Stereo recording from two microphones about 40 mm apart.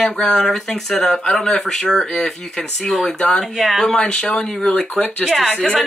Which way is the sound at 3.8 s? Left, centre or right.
Centre.